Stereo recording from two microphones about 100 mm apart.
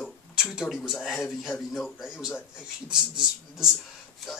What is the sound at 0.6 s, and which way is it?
Speech, centre (ahead or behind).